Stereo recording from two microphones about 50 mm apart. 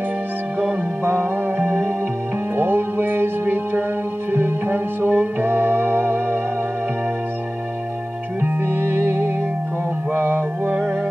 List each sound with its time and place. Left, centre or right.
1.0 s music: right
8.4 s music: right